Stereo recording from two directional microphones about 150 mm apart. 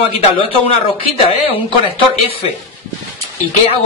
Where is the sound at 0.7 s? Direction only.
40° left (ahead or behind).